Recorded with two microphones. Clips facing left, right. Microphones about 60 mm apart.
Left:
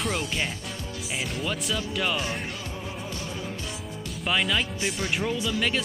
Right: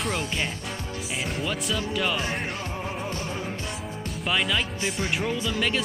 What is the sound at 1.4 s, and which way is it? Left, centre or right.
Speech, centre.